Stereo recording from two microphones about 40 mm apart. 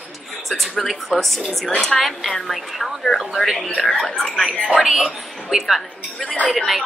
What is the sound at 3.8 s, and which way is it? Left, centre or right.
Speech, centre.